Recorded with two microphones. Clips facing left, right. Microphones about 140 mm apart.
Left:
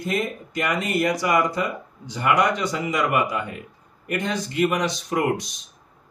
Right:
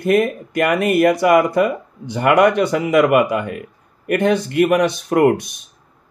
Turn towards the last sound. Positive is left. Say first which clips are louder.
# right 9 dB
turn(degrees=-55)  # may be behind; listen again after turning